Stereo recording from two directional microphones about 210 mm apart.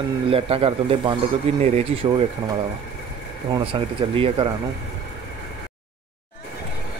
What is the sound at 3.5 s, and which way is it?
Speech, 25° right (ahead or behind).